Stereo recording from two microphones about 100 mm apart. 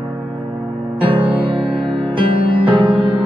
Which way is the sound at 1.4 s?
60° right (ahead or behind).